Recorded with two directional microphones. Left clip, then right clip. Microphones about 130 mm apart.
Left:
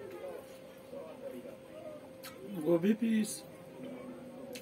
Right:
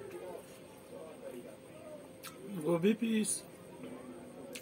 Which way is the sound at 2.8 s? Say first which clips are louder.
Even; 15° right (ahead or behind).